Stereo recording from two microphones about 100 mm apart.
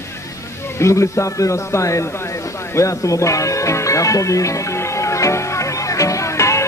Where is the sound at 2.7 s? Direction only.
30° left (ahead or behind).